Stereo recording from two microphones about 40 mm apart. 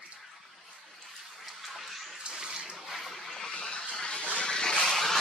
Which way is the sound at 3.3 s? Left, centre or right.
Centre.